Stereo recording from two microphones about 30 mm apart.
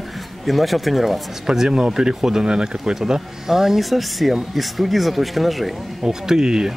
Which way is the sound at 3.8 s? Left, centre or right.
Centre.